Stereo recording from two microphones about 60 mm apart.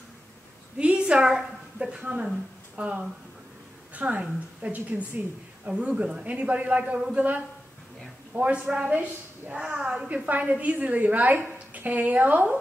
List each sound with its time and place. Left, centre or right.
0.7 s a sound: centre
2.2 s speech: centre
3.9 s a woman's voice: right
10.0 s a woman's voice: right